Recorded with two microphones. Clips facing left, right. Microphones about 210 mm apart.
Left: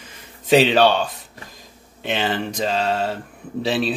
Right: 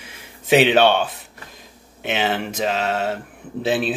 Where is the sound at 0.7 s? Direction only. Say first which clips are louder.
Right 1 dB; 55° right (ahead or behind).